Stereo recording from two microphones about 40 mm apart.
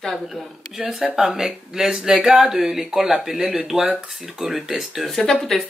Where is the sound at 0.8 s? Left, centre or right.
Centre.